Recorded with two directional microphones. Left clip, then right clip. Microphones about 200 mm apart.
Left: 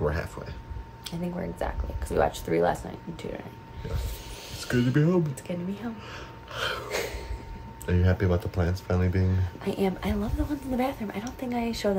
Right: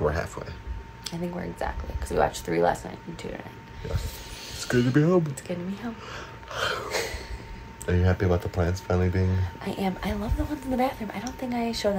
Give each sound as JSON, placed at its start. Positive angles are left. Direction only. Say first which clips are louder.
{"t": 0.0, "sound": "a sound", "louder": "right 3 dB", "side_deg": 5}
{"t": 1.0, "sound": "speech", "louder": "right 1 dB", "side_deg": 15}
{"t": 4.6, "sound": "speech", "louder": "right 3 dB", "side_deg": 0}
{"t": 5.5, "sound": "speech", "louder": "right 5 dB", "side_deg": 15}
{"t": 6.1, "sound": "gasp", "louder": "right 3 dB", "side_deg": 5}
{"t": 6.9, "sound": "a sound", "louder": "right 2 dB", "side_deg": 15}
{"t": 7.8, "sound": "speech", "louder": "right 2 dB", "side_deg": 5}